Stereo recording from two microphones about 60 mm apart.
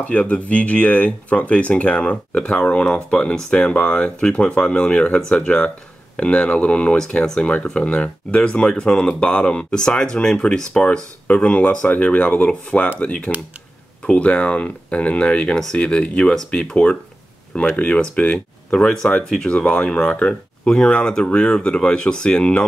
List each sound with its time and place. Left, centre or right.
0.1 s speech: left